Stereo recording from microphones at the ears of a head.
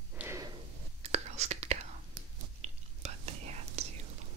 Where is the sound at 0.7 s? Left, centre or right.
Right.